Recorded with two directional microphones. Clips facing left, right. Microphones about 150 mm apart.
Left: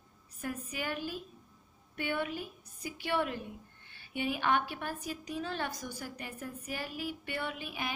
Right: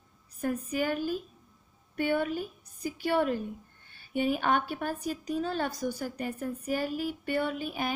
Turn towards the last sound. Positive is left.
turn(degrees=-45)  # may be behind; listen again after turning